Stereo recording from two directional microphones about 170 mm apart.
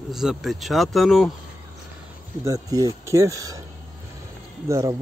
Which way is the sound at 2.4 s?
20° right (ahead or behind).